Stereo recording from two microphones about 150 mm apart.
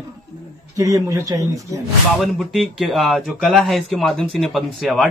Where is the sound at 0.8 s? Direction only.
20° right (ahead or behind).